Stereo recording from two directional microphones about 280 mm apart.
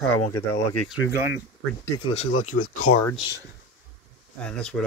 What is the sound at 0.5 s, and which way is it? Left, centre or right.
Speech, left.